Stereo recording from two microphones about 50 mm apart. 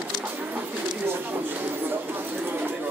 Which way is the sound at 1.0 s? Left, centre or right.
Right.